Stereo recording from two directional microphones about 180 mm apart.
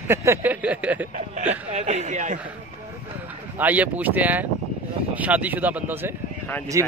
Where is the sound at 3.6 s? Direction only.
10° right (ahead or behind).